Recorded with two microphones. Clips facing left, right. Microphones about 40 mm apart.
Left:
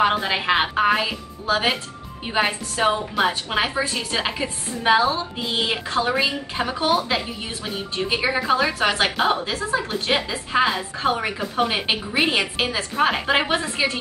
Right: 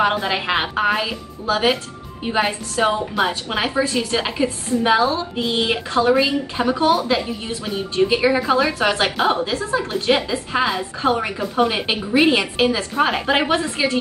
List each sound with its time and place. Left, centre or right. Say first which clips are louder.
0.0 s a woman's voice: right 1 dB; centre
5.9 s a woman's voice: right 6 dB; centre